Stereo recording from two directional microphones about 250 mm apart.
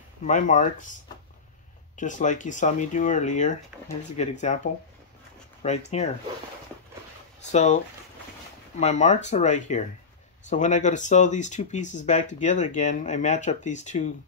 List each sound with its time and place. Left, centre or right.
0.2 s speech: left
2.0 s speech: left
5.6 s speech: left
7.5 s speech: left